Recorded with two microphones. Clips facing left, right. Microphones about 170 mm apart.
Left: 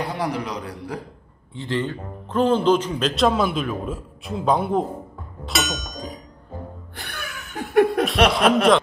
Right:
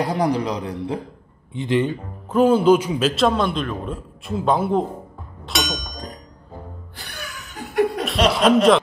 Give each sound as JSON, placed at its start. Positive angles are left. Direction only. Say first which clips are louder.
{"t": 0.0, "sound": "a man's voice", "louder": "right 5 dB", "side_deg": -35}
{"t": 1.5, "sound": "speech", "louder": "right 5 dB", "side_deg": -15}
{"t": 5.4, "sound": "a sound", "louder": "even", "side_deg": 0}
{"t": 7.0, "sound": "laughter", "louder": "left 1 dB", "side_deg": 55}
{"t": 8.3, "sound": "speech", "louder": "right 2 dB", "side_deg": 0}